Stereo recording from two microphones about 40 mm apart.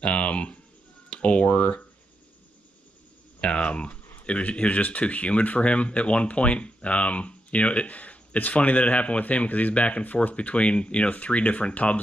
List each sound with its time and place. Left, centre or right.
0.0 s a sound: left
1.2 s speech: left
3.3 s speech: left